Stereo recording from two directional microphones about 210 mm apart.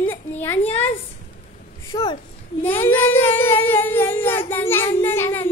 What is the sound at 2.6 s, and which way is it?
Speech, 10° left (ahead or behind).